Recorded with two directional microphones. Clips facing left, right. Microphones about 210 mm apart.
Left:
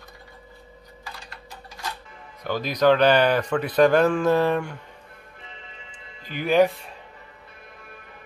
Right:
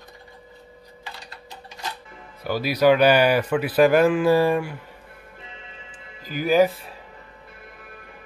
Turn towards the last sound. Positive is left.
turn(degrees=0)  # may be behind; listen again after turning